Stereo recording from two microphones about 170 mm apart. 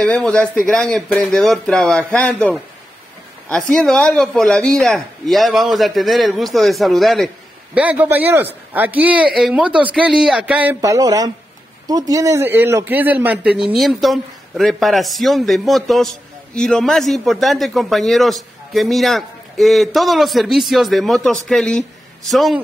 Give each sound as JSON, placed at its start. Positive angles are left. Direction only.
{"t": 0.0, "sound": "a man's voice", "side_deg": 5}
{"t": 3.7, "sound": "a man's voice", "side_deg": 5}
{"t": 10.8, "sound": "a man's voice", "side_deg": -20}